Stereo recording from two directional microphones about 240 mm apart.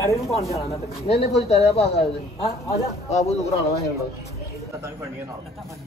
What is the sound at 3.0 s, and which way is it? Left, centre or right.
Speech, left.